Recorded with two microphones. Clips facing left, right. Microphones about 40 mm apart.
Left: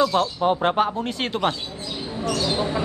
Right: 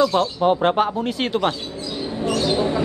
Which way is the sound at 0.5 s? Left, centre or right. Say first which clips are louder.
Right 3 dB; centre.